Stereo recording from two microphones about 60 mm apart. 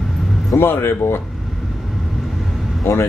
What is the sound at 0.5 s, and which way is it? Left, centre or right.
Speech, left.